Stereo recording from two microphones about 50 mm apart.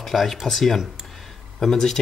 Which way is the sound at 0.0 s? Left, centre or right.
Centre.